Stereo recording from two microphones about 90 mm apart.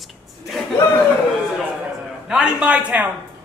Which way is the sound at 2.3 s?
10° right (ahead or behind).